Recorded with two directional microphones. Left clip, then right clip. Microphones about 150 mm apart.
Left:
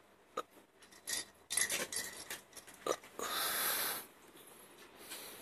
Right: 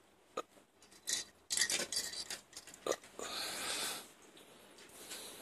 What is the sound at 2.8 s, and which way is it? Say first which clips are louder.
Pig: left 1 dB; 5° right (ahead or behind).